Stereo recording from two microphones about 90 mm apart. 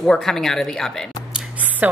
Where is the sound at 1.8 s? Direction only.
20° right (ahead or behind).